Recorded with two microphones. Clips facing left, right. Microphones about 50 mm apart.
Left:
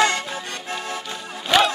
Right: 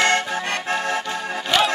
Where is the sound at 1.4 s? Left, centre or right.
Centre.